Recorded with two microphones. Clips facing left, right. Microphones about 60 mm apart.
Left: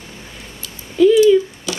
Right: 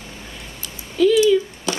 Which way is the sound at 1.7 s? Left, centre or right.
Right.